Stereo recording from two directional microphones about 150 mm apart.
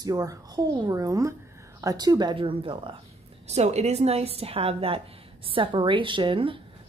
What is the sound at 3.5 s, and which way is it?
A woman's voice, 45° right (ahead or behind).